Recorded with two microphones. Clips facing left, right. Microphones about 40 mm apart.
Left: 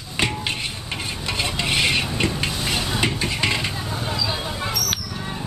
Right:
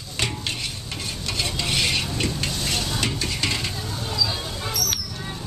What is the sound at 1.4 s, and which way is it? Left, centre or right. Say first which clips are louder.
Stir: left 3 dB; left.